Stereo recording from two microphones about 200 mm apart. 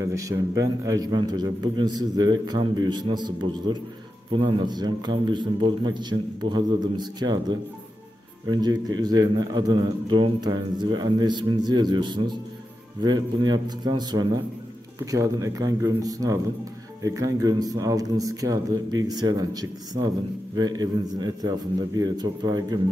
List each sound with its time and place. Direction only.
0.0 s a man's voice: 15° right (ahead or behind)